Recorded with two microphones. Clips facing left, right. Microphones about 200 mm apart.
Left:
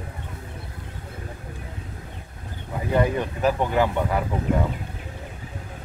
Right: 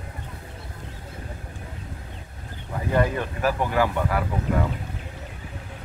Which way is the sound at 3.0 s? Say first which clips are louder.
Left 1 dB; 20° left (ahead or behind).